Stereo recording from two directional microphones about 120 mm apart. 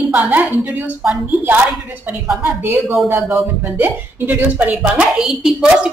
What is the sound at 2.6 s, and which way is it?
A woman's voice, 20° right (ahead or behind).